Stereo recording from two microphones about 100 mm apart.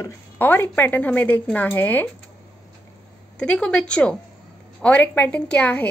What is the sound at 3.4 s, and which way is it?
A woman's voice, 10° left (ahead or behind).